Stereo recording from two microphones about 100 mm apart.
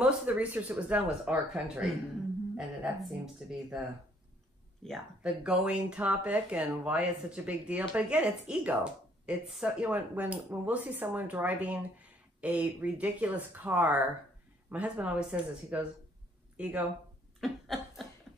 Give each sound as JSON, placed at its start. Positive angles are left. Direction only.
{"t": 0.0, "sound": "speech", "side_deg": -10}
{"t": 4.8, "sound": "speech", "side_deg": 5}
{"t": 17.4, "sound": "a sound", "side_deg": 0}